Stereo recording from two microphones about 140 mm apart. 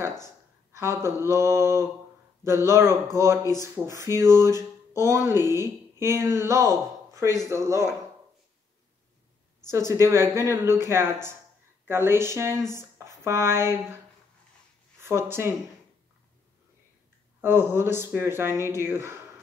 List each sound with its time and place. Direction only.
0.7 s speech: 20° right (ahead or behind)
9.7 s speech: 20° right (ahead or behind)
12.7 s a sound: 20° right (ahead or behind)
15.0 s speech: 20° right (ahead or behind)
17.4 s speech: 15° right (ahead or behind)